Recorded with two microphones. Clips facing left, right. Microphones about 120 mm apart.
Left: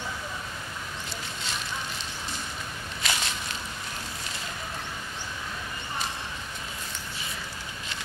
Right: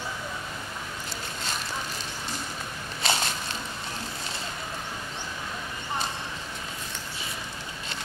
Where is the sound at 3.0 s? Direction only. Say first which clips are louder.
Right 4 dB; 30° right (ahead or behind).